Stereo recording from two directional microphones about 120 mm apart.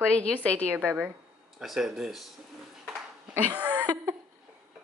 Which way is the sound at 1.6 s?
5° right (ahead or behind).